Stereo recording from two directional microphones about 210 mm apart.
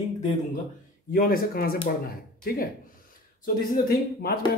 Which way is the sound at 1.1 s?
45° left (ahead or behind).